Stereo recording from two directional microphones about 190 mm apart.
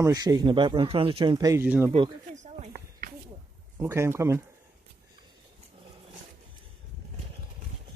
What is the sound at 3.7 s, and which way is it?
Speech, 15° right (ahead or behind).